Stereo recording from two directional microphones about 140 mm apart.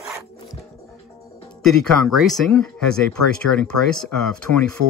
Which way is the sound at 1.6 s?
Centre (ahead or behind).